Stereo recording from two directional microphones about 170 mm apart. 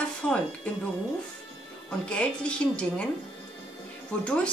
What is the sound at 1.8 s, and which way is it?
Speech, 5° left (ahead or behind).